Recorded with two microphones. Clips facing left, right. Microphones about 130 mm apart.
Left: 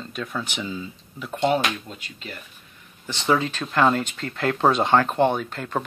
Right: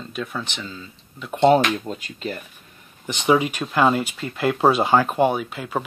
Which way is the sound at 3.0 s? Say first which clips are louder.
Right 3 dB; 15° right (ahead or behind).